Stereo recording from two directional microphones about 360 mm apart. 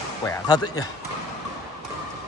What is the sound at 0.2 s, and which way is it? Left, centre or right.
Speech, centre.